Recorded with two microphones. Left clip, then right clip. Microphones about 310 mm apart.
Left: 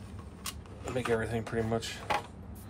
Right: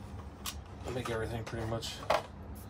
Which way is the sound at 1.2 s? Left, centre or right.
Left.